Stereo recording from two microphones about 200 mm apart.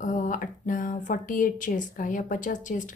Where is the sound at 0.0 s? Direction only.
40° left (ahead or behind).